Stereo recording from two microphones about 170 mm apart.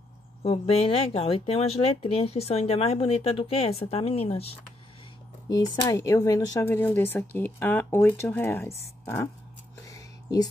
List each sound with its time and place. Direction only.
0.4 s speech: 35° left (ahead or behind)
5.5 s speech: 20° left (ahead or behind)
9.8 s a sound: 20° left (ahead or behind)